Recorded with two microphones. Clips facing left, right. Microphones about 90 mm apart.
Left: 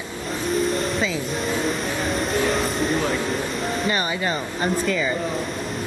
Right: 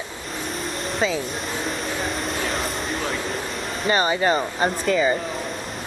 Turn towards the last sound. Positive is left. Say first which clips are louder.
# right 2 dB
turn(degrees=-35)  # may be behind; listen again after turning